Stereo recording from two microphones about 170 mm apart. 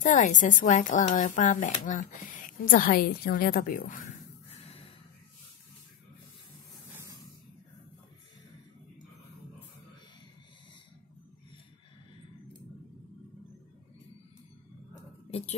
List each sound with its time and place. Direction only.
0.0 s speech: 45° left (ahead or behind)
4.6 s gasp: 35° left (ahead or behind)